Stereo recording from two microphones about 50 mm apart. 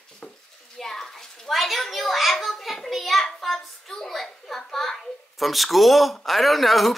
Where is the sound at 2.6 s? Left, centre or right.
Centre.